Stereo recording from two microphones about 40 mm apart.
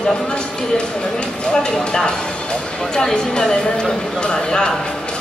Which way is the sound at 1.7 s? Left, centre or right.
Centre.